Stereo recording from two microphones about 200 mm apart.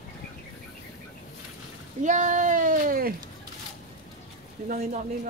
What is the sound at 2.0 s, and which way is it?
Speech, 35° right (ahead or behind).